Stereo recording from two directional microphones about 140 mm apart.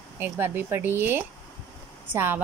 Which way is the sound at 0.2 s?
15° right (ahead or behind).